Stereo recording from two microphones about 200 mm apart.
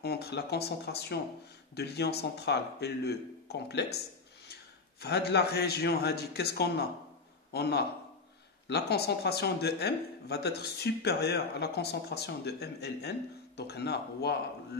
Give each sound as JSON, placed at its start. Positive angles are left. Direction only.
{"t": 0.0, "sound": "speech", "side_deg": 55}
{"t": 5.0, "sound": "a man's voice", "side_deg": 55}